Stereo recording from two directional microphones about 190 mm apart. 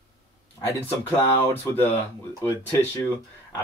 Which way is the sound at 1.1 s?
10° left (ahead or behind).